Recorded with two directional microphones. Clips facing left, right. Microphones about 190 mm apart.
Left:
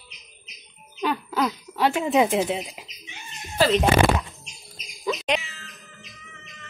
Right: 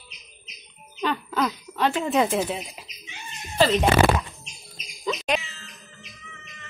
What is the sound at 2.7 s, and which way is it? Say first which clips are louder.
Bird: left 1 dB; 15° left (ahead or behind).